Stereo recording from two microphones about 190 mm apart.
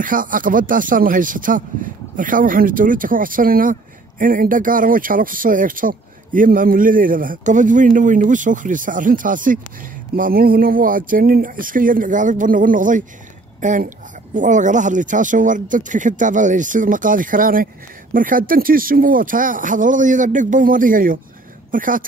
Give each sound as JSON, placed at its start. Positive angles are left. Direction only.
{"t": 0.0, "sound": "speech", "side_deg": -45}